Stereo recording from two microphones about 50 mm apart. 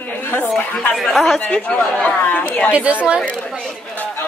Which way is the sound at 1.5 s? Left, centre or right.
Left.